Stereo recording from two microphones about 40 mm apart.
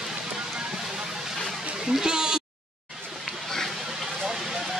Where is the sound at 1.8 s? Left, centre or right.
Centre.